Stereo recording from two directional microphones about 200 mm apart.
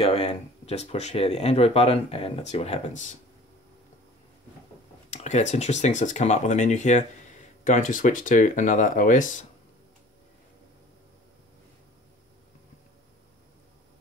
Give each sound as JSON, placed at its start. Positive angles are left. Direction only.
{"t": 0.0, "sound": "speech", "side_deg": 30}
{"t": 5.1, "sound": "speech", "side_deg": 35}